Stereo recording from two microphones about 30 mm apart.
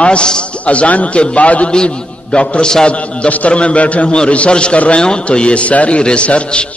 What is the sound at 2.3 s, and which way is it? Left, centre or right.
A man's voice, left.